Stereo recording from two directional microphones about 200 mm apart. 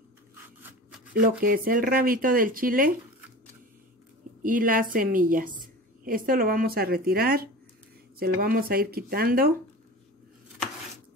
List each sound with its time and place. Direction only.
1.4 s speech: 45° right (ahead or behind)
4.4 s speech: 45° right (ahead or behind)